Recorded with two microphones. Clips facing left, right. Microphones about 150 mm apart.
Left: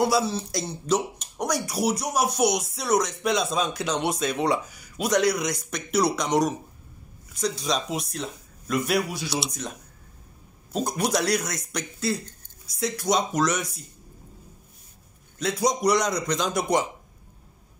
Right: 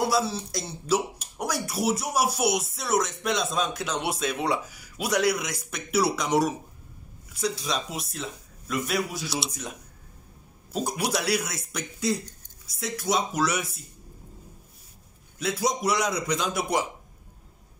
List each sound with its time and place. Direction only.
0.1 s speech: centre (ahead or behind)
10.7 s speech: 5° right (ahead or behind)
12.6 s speech: centre (ahead or behind)
15.3 s speech: 5° right (ahead or behind)